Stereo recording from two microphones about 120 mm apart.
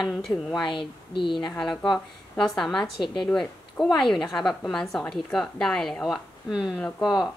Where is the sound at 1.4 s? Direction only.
5° left (ahead or behind).